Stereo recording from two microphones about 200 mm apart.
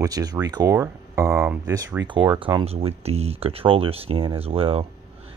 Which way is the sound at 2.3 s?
25° right (ahead or behind).